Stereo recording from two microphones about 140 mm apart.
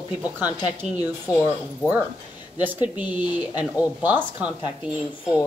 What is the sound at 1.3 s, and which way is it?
Speech, 10° right (ahead or behind).